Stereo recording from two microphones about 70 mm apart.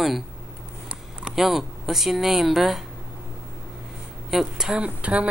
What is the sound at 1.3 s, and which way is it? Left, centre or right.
Speech, centre.